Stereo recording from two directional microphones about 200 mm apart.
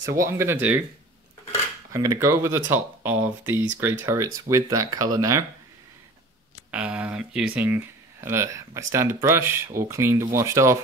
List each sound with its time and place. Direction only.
0.1 s speech: 15° right (ahead or behind)
1.9 s speech: 15° right (ahead or behind)
6.7 s speech: 5° right (ahead or behind)